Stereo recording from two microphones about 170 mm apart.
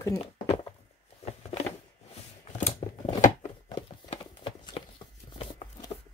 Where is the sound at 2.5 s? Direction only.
40° left (ahead or behind).